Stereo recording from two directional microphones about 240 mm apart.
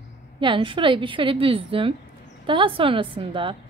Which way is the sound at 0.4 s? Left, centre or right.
Right.